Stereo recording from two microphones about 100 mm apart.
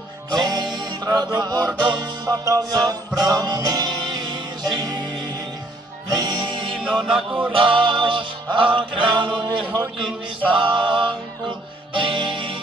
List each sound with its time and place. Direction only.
0.3 s music: 45° right (ahead or behind)
7.1 s music: 5° right (ahead or behind)
7.5 s music: 60° right (ahead or behind)